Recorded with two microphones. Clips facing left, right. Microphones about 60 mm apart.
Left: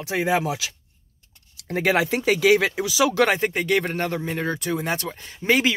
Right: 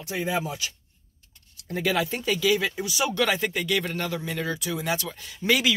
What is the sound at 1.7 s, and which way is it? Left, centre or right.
Speech, left.